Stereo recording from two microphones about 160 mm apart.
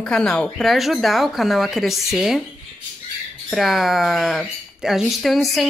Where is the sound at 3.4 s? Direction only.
Centre (ahead or behind).